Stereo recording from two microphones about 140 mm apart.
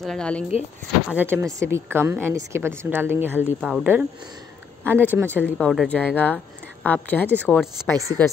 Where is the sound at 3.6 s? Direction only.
5° right (ahead or behind).